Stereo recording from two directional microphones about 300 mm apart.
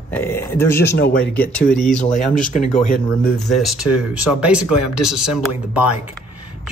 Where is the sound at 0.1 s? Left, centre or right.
Centre.